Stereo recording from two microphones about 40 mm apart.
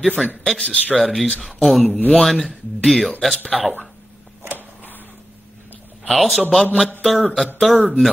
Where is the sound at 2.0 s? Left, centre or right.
Left.